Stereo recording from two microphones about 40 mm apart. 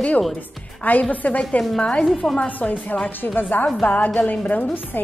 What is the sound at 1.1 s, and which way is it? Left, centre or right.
Speech, left.